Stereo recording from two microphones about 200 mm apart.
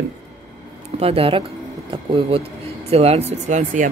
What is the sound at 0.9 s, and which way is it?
Speech, 30° right (ahead or behind).